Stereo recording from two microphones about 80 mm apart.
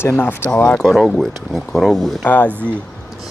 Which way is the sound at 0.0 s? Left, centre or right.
Left.